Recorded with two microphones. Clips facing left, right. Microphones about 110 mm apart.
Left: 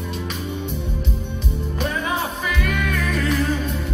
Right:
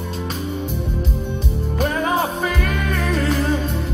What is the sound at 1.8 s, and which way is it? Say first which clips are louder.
Music: right 5 dB; 40° right (ahead or behind).